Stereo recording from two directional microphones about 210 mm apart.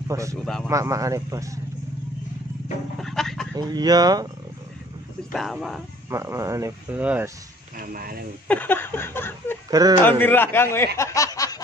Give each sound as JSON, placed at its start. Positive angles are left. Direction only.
{"t": 0.1, "sound": "speech", "side_deg": -15}
{"t": 0.4, "sound": "speech", "side_deg": 0}
{"t": 0.7, "sound": "speech", "side_deg": -15}
{"t": 3.0, "sound": "a sound", "side_deg": 0}
{"t": 3.5, "sound": "speech", "side_deg": -20}
{"t": 5.3, "sound": "speech", "side_deg": 0}
{"t": 6.0, "sound": "speech", "side_deg": -15}
{"t": 7.7, "sound": "speech", "side_deg": -40}
{"t": 8.5, "sound": "a sound", "side_deg": 10}
{"t": 9.7, "sound": "speech", "side_deg": -20}
{"t": 10.0, "sound": "a sound", "side_deg": 10}
{"t": 11.0, "sound": "snicker", "side_deg": 15}